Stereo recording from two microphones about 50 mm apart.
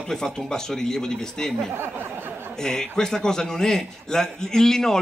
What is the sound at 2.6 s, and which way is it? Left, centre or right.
A man's voice, centre.